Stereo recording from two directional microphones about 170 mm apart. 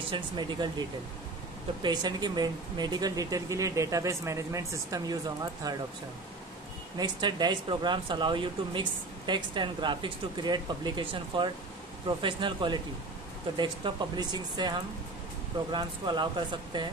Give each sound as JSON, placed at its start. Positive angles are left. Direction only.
{"t": 0.1, "sound": "speech", "side_deg": -25}
{"t": 1.8, "sound": "speech", "side_deg": -25}
{"t": 7.0, "sound": "speech", "side_deg": -25}